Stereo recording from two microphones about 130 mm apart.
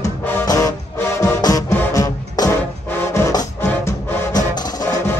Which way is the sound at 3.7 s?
15° left (ahead or behind).